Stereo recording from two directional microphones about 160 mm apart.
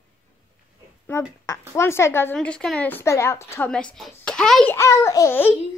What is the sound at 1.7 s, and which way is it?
A child's voice, 15° left (ahead or behind).